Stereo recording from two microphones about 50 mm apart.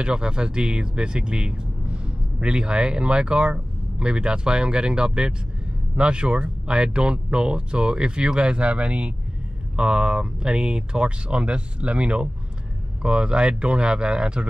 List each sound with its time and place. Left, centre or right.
0.0 s speech: centre